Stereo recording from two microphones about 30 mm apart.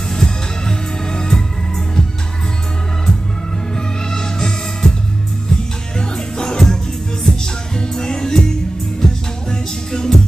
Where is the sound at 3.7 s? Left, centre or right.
Left.